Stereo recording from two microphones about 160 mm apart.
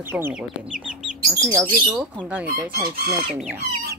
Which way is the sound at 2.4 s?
65° right (ahead or behind).